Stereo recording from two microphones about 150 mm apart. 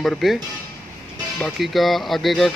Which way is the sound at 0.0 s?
Centre (ahead or behind).